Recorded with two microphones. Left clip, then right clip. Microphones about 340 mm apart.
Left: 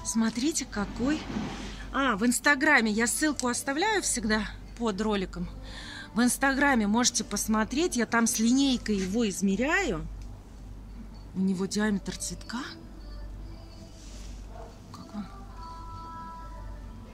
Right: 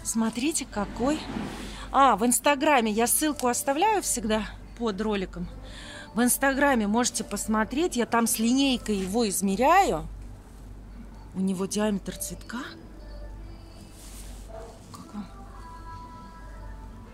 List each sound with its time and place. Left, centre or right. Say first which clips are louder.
0.0 s a woman's voice: right 1 dB; centre
11.4 s a woman's voice: right 2 dB; centre